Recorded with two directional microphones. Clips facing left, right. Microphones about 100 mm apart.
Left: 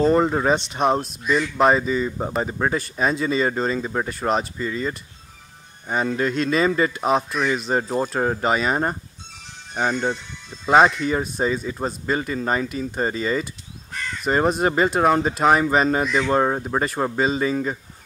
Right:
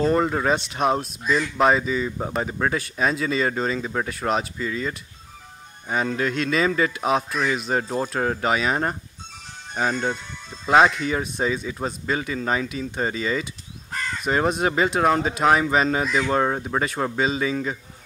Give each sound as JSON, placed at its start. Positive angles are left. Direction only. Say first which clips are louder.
{"t": 0.0, "sound": "speech", "louder": "left 3 dB", "side_deg": 5}